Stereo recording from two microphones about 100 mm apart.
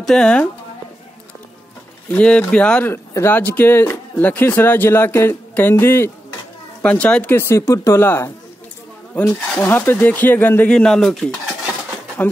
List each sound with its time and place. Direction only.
0.0 s speech: 10° left (ahead or behind)
2.0 s speech: 10° left (ahead or behind)
2.9 s speech: 20° left (ahead or behind)
6.8 s speech: 10° left (ahead or behind)
7.2 s speech: 25° left (ahead or behind)
10.7 s speech: 5° left (ahead or behind)